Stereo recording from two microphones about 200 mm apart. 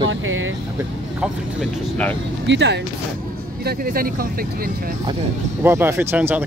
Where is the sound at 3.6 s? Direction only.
45° right (ahead or behind).